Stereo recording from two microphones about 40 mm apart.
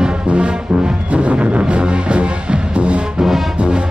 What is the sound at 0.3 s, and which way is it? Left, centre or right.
Music, right.